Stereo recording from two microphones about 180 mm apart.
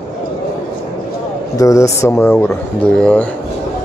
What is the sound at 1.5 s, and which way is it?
Speech, 15° left (ahead or behind).